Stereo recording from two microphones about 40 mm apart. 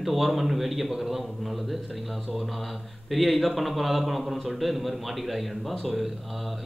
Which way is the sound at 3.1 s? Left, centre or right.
Centre.